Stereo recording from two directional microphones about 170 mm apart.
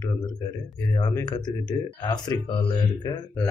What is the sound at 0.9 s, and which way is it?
Speech, 25° left (ahead or behind).